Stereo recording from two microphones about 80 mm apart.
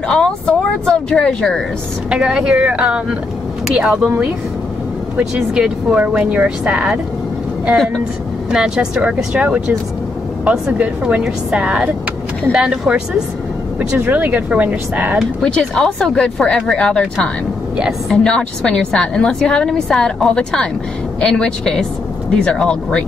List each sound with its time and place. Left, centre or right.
0.1 s a woman's voice: centre
2.0 s speech: centre
5.1 s speech: centre
7.7 s speech: centre
8.5 s speech: centre
10.8 s speech: centre
13.7 s speech: right
15.4 s a woman's voice: centre